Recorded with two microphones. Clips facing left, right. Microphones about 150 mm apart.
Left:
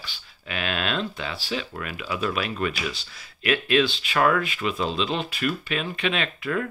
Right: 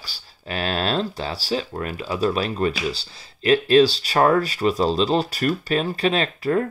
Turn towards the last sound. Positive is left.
turn(degrees=-35)  # may be behind; listen again after turning